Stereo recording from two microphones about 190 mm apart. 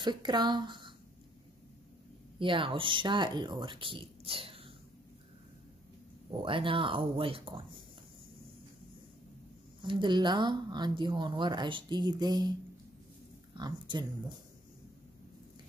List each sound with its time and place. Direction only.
0.0 s speech: 25° right (ahead or behind)
2.3 s speech: 25° right (ahead or behind)
6.3 s speech: 25° right (ahead or behind)
9.8 s speech: 25° right (ahead or behind)
13.6 s speech: 20° right (ahead or behind)